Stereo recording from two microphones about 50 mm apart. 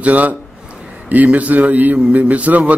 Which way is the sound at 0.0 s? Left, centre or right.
Right.